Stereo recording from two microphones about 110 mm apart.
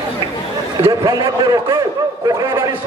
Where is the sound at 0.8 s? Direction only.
30° right (ahead or behind).